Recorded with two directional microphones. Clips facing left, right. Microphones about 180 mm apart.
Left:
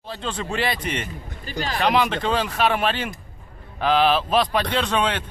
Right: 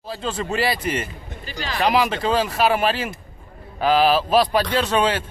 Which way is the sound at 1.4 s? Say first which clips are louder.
Left 2 dB; 45° left (ahead or behind).